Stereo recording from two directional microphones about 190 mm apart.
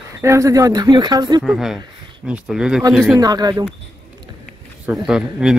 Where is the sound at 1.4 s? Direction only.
Centre (ahead or behind).